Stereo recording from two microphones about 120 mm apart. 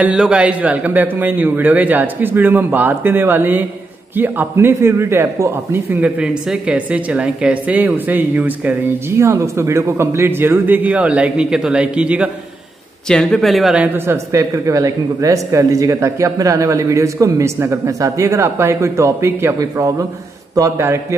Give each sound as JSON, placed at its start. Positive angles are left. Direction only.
{"t": 0.0, "sound": "a man's voice", "side_deg": -10}
{"t": 13.1, "sound": "speech", "side_deg": 5}
{"t": 13.9, "sound": "speech", "side_deg": -20}